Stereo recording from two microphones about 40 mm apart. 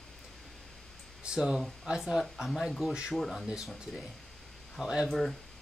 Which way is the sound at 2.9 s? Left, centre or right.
Centre.